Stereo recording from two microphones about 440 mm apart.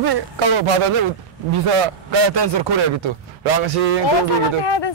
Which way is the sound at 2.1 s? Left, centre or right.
Right.